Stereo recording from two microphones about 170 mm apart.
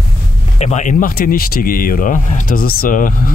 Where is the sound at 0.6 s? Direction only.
40° left (ahead or behind).